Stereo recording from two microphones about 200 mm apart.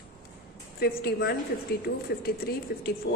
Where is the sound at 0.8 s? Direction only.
50° left (ahead or behind).